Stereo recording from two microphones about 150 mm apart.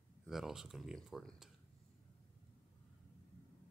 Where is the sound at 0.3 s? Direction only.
Centre (ahead or behind).